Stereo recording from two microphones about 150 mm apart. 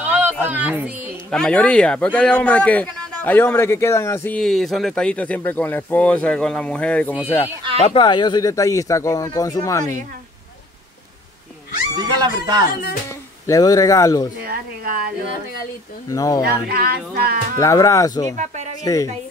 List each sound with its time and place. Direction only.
0.0 s a sound: 10° right (ahead or behind)
0.5 s music: 10° right (ahead or behind)
1.3 s a man's voice: 5° left (ahead or behind)
4.4 s a man's voice: centre (ahead or behind)
7.8 s speech: 35° left (ahead or behind)
12.0 s speech: 25° right (ahead or behind)
12.6 s music: 70° left (ahead or behind)
13.5 s speech: 25° left (ahead or behind)
14.4 s speech: 85° right
16.1 s speech: 25° left (ahead or behind)
16.6 s speech: 90° right
17.6 s speech: 20° left (ahead or behind)